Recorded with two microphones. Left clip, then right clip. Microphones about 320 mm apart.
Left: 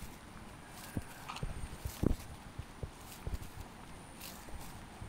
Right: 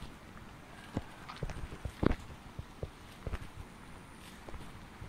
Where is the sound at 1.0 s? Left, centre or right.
Right.